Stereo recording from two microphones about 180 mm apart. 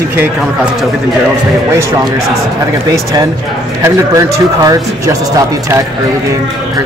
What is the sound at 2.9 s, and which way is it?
Speech, 20° right (ahead or behind).